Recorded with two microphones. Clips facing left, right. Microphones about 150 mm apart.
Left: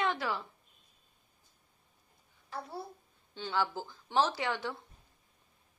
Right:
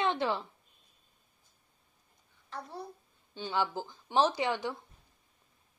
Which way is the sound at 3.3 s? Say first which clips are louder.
Right 1 dB; 15° right (ahead or behind).